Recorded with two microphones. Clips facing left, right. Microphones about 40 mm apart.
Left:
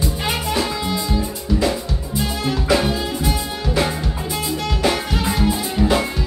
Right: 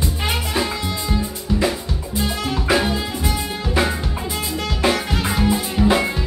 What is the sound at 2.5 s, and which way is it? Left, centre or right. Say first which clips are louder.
Music: left 1 dB; centre.